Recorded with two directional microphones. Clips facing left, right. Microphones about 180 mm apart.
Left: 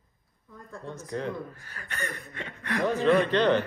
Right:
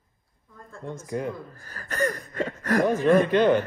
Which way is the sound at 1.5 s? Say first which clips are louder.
Right 5 dB; 35° right (ahead or behind).